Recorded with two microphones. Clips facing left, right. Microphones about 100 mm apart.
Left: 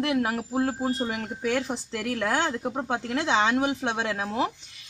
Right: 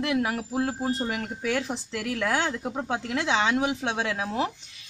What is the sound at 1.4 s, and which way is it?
Speech, 25° left (ahead or behind).